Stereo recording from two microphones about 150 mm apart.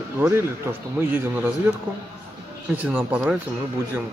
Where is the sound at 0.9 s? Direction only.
15° right (ahead or behind).